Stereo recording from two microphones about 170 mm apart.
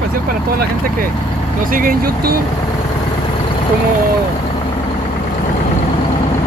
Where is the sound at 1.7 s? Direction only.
55° right (ahead or behind).